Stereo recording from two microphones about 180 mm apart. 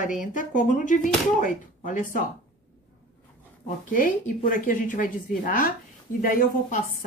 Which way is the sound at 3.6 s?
50° left (ahead or behind).